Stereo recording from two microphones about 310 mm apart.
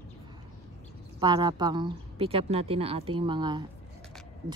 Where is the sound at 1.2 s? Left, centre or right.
Centre.